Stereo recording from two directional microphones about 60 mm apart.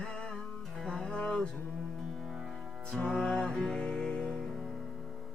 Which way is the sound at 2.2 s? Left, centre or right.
Centre.